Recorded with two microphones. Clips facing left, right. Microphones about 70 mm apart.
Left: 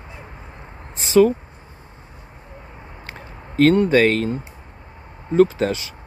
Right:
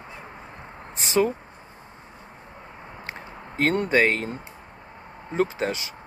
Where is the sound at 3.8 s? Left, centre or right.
Right.